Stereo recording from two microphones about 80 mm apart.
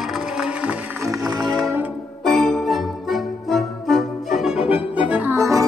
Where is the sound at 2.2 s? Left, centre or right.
Centre.